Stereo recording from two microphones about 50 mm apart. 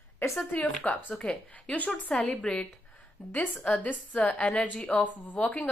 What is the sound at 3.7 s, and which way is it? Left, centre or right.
A woman's voice, left.